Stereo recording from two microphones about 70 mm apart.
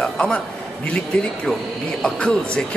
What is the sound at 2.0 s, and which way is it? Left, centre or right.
Speech, centre.